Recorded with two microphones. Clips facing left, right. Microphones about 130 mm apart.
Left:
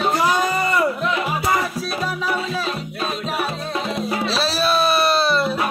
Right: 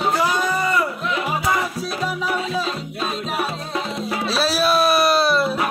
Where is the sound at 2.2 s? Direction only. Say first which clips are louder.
Right 1 dB; 20° right (ahead or behind).